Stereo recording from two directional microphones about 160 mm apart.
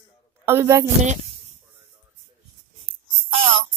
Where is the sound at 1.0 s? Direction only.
45° right (ahead or behind).